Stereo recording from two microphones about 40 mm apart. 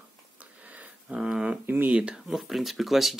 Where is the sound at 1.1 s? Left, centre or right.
Right.